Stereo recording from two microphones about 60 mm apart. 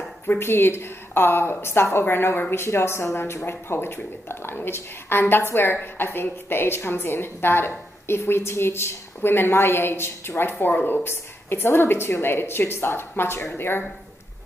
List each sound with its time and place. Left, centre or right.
0.4 s a woman's voice: left